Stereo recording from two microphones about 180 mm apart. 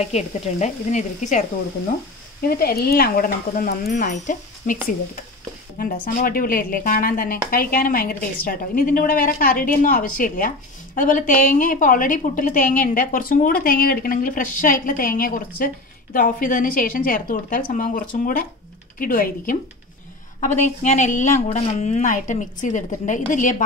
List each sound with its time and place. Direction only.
0.0 s speech: 40° left (ahead or behind)
2.4 s a woman's voice: 60° left (ahead or behind)
6.0 s a woman's voice: 50° left (ahead or behind)
20.3 s a woman's voice: 40° left (ahead or behind)